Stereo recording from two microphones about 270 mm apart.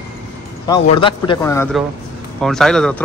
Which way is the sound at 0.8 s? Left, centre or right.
Centre.